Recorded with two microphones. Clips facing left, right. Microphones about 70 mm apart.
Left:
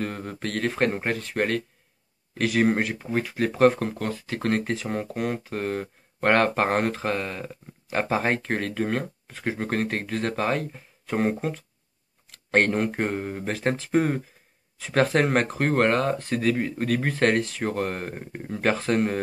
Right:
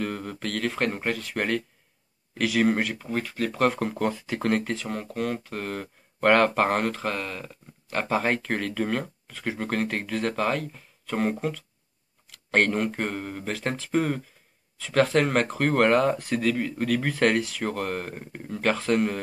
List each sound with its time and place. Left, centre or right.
0.0 s speech: centre
3.0 s speech: left
3.5 s speech: centre
3.8 s speech: centre
4.8 s speech: centre
12.4 s speech: centre
12.9 s speech: centre
13.6 s speech: centre
13.9 s speech: left; by 16.3 s centre
16.3 s speech: centre